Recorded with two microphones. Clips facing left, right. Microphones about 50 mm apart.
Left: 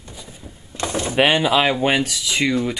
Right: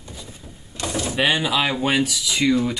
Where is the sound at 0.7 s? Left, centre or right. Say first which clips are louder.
Left 4 dB; left.